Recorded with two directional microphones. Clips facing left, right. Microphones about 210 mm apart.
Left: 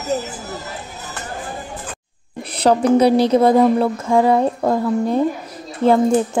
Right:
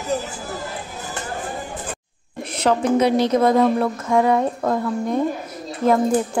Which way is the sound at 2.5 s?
35° left (ahead or behind).